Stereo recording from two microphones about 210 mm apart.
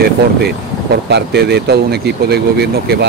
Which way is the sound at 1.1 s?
50° right (ahead or behind).